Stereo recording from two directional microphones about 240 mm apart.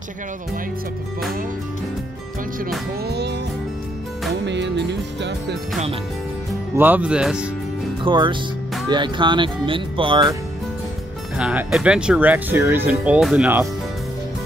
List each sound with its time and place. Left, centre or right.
3.1 s music: right
4.5 s music: right
6.8 s speech: centre
8.0 s speech: centre
11.3 s speech: centre